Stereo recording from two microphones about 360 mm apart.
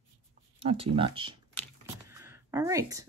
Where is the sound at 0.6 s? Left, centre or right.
Centre.